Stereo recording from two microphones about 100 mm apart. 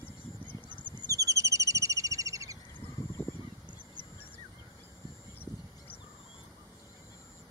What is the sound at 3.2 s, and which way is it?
Goose, 20° left (ahead or behind).